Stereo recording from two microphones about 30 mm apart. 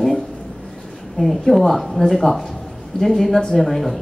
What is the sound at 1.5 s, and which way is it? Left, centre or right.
Speech, centre.